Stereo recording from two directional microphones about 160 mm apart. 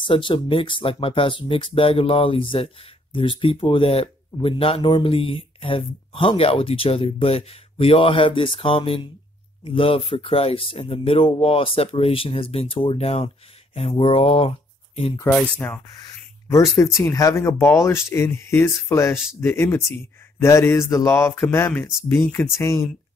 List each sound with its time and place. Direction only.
0.0 s speech: 30° left (ahead or behind)
15.3 s speech: 10° left (ahead or behind)
16.4 s speech: 20° left (ahead or behind)